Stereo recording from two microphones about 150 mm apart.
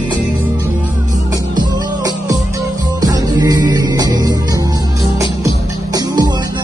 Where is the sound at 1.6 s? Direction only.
25° right (ahead or behind).